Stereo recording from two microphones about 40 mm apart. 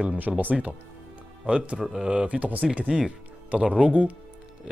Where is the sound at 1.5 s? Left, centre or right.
Right.